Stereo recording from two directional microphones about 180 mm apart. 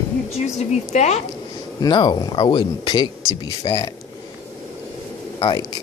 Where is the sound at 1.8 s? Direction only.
25° left (ahead or behind).